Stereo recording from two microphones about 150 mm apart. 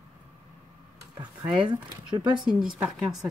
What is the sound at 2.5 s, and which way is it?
Speech, 5° right (ahead or behind).